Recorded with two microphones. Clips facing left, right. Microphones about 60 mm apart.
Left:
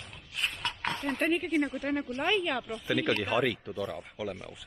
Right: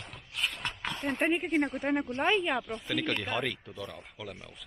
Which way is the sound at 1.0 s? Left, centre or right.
Right.